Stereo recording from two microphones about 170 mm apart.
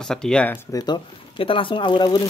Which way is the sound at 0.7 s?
25° left (ahead or behind).